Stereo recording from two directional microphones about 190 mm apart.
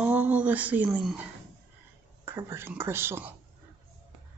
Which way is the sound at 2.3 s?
10° right (ahead or behind).